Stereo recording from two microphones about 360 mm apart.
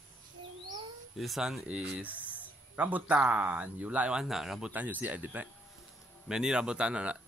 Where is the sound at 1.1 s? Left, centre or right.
Centre.